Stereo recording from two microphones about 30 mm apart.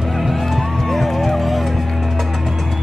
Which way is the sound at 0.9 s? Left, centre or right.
Centre.